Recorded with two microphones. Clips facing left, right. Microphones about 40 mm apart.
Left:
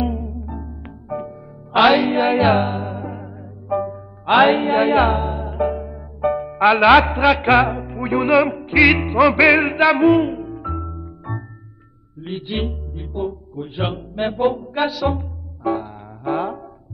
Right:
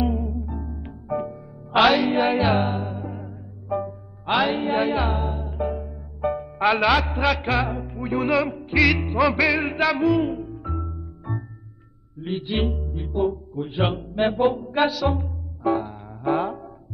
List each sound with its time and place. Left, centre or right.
0.0 s music: centre; by 3.9 s left
4.3 s music: left
4.6 s speech: left
5.1 s music: left
7.7 s music: left
9.2 s speech: left
9.5 s music: left
12.2 s music: centre